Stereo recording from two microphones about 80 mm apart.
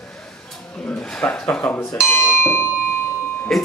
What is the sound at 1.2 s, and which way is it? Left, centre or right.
Speech, centre.